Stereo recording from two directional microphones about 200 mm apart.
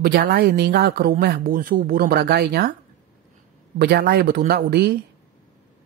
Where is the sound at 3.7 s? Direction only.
55° right (ahead or behind).